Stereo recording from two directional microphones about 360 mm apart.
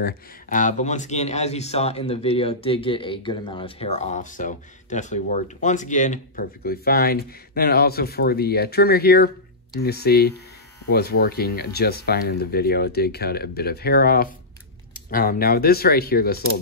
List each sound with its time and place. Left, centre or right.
0.0 s speech: left